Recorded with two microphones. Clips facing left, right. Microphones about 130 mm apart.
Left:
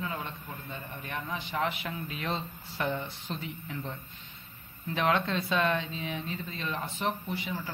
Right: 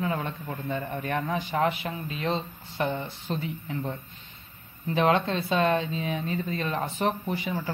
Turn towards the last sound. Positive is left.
turn(degrees=-45)  # may be behind; listen again after turning